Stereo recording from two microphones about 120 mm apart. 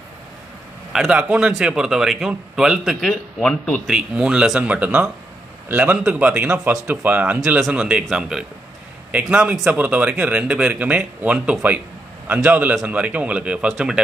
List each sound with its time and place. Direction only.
0.9 s a man's voice: 5° right (ahead or behind)
3.9 s a man's voice: 5° right (ahead or behind)